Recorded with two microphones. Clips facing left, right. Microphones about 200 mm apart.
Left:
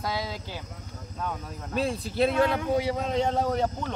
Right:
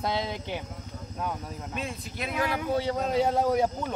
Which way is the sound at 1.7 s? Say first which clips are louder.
Left 10 dB; 30° left (ahead or behind).